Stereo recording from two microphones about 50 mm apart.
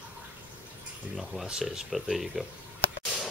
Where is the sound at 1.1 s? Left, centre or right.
Centre.